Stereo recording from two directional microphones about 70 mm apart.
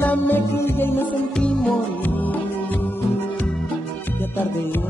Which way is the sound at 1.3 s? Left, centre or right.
Centre.